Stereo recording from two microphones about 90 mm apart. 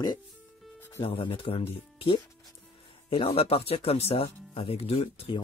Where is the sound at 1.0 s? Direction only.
75° left (ahead or behind).